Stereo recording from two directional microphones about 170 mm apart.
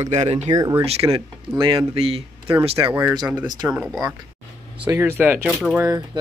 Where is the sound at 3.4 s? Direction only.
25° right (ahead or behind).